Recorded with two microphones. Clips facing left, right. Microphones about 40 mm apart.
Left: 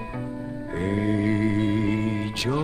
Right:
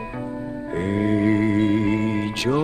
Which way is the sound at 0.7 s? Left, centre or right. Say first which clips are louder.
Right 3 dB; centre.